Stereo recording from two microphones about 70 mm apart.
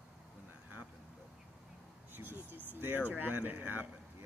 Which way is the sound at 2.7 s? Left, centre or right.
Right.